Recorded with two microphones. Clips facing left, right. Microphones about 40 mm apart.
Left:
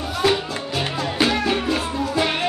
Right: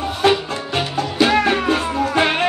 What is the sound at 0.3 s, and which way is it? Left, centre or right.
Music, right.